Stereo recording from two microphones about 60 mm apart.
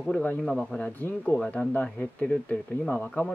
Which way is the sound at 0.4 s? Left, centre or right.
Centre.